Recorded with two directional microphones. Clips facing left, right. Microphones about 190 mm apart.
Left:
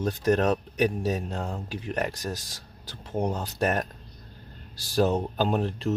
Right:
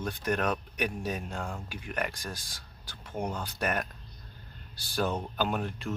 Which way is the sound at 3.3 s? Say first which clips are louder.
Left 5 dB; 40° left (ahead or behind).